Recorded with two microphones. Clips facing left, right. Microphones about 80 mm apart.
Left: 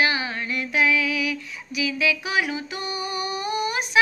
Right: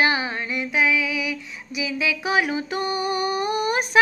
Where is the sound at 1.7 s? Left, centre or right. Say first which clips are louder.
Left 1 dB; right.